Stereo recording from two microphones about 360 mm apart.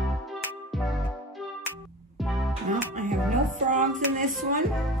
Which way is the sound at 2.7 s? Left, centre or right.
Right.